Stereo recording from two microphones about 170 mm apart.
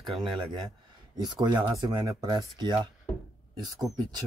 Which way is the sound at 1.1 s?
25° right (ahead or behind).